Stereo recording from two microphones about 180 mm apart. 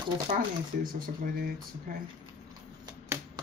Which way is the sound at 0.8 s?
50° right (ahead or behind).